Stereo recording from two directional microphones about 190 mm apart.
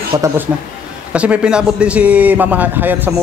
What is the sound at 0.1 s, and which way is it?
Speech, 15° right (ahead or behind).